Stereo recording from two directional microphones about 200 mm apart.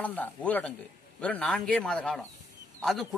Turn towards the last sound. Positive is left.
turn(degrees=0)  # may be behind; listen again after turning